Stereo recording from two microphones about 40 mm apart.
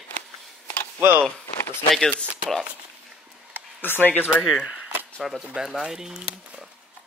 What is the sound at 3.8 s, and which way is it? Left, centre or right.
Speech, left.